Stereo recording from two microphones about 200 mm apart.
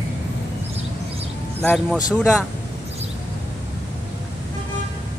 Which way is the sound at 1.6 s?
10° left (ahead or behind).